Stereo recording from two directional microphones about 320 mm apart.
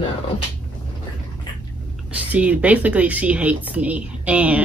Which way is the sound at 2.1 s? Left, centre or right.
Centre.